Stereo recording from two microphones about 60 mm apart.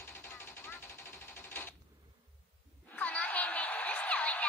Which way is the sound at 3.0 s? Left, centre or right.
Left.